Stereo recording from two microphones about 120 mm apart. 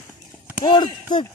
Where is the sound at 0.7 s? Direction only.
40° left (ahead or behind).